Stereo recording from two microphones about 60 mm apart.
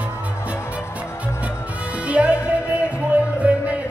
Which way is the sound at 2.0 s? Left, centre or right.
Right.